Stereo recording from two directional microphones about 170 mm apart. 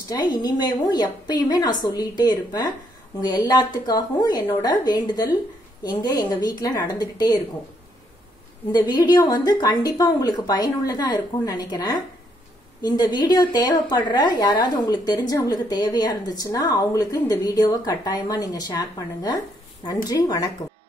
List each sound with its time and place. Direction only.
0.1 s a woman's voice: 25° left (ahead or behind)
8.7 s a woman's voice: 25° left (ahead or behind)